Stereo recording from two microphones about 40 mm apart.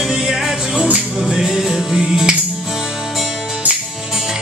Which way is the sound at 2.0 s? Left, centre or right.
Centre.